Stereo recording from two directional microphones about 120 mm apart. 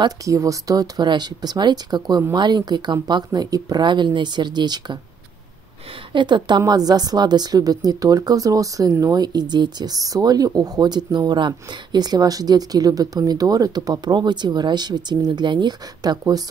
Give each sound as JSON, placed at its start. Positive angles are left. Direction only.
{"t": 0.0, "sound": "a woman's voice", "side_deg": -25}
{"t": 6.1, "sound": "a woman's voice", "side_deg": -40}